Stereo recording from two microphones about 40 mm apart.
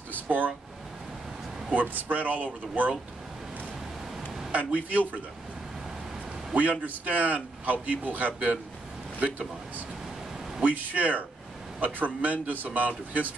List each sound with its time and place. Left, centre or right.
0.1 s a sound: right
1.7 s a man's voice: right
4.5 s a man's voice: right
6.5 s a man's voice: right
10.6 s a man's voice: right